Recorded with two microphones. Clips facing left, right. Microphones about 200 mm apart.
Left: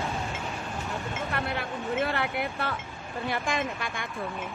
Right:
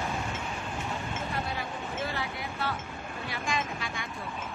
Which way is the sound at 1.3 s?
65° left (ahead or behind).